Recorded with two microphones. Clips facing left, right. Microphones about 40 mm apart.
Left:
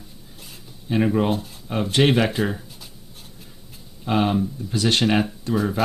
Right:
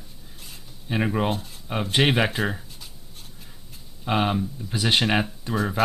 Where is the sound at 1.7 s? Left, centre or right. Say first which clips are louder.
Left 3 dB; centre.